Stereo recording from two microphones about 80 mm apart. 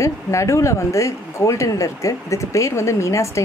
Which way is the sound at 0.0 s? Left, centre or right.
Left.